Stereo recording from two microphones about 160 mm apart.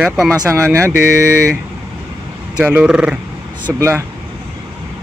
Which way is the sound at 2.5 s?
5° right (ahead or behind).